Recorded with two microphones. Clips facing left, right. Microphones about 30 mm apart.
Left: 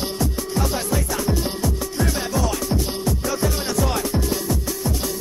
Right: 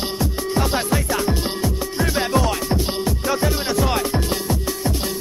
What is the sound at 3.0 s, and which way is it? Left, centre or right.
Music, right.